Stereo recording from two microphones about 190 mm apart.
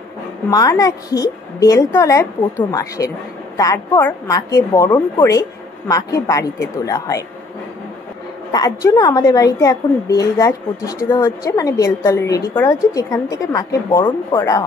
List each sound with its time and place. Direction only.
0.5 s a woman's voice: 20° left (ahead or behind)
8.5 s a woman's voice: 20° left (ahead or behind)